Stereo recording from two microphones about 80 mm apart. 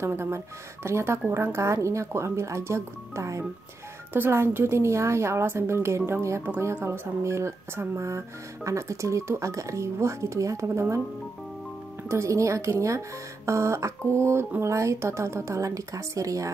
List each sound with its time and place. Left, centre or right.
0.0 s a woman's voice: right
12.1 s a woman's voice: right